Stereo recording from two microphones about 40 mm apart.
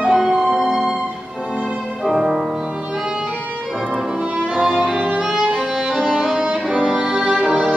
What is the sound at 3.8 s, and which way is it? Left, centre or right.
Music, centre.